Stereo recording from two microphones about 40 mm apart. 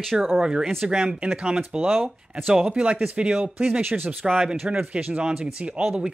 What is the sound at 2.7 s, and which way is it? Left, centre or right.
Speech, right.